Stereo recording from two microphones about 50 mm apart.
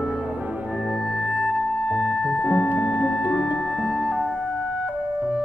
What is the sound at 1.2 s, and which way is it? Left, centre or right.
Music, centre.